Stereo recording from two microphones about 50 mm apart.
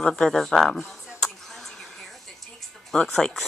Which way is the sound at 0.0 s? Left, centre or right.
Centre.